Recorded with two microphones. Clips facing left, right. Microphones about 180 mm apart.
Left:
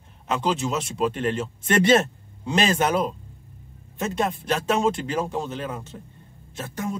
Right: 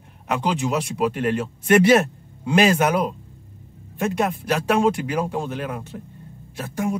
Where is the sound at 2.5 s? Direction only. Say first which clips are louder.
Right 4 dB; 10° right (ahead or behind).